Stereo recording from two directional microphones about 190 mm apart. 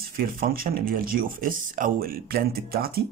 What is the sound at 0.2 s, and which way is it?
Speech, 50° right (ahead or behind).